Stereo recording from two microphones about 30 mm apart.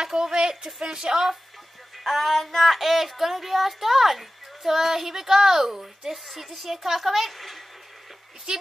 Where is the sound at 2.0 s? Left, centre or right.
Centre.